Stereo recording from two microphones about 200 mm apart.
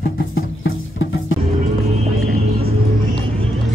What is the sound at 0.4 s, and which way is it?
Music, 75° left (ahead or behind).